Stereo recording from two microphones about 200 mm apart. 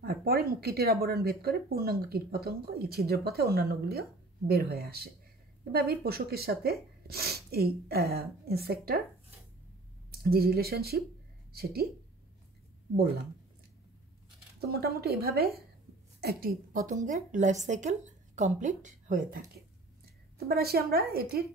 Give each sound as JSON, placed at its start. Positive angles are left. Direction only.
{"t": 0.0, "sound": "speech", "side_deg": -50}
{"t": 10.3, "sound": "speech", "side_deg": -50}
{"t": 14.6, "sound": "a woman's voice", "side_deg": -50}